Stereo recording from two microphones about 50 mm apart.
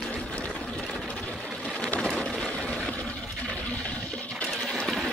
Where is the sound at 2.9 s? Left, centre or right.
Left.